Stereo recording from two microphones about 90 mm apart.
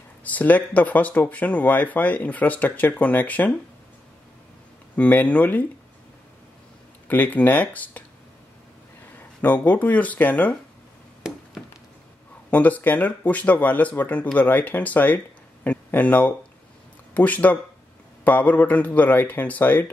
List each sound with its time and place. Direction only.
0.2 s speech: 15° left (ahead or behind)
4.9 s speech: 15° left (ahead or behind)
7.1 s speech: 20° left (ahead or behind)
9.4 s speech: 20° left (ahead or behind)
12.4 s speech: 15° left (ahead or behind)